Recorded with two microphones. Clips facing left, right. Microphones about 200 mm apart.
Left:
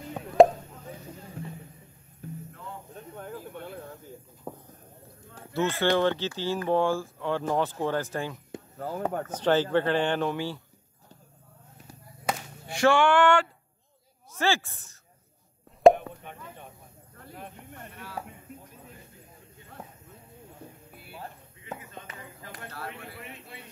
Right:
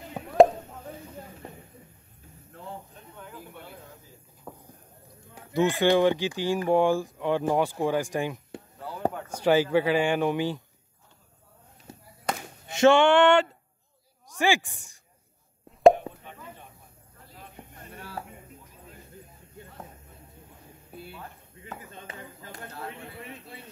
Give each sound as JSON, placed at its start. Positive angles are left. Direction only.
{"t": 0.4, "sound": "plop", "side_deg": 0}
{"t": 4.5, "sound": "a sound", "side_deg": 20}
{"t": 5.3, "sound": "speech", "side_deg": -15}
{"t": 8.7, "sound": "speech", "side_deg": 45}
{"t": 9.3, "sound": "speech", "side_deg": -10}
{"t": 12.6, "sound": "speech", "side_deg": -20}
{"t": 16.1, "sound": "plop", "side_deg": -20}
{"t": 21.1, "sound": "a sound", "side_deg": 25}
{"t": 22.0, "sound": "chop", "side_deg": -25}